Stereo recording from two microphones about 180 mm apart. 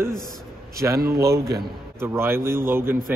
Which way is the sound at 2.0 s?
15° right (ahead or behind).